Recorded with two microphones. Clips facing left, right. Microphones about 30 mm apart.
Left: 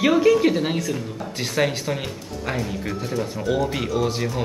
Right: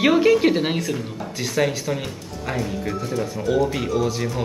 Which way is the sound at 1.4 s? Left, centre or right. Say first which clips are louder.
Right 1 dB; centre.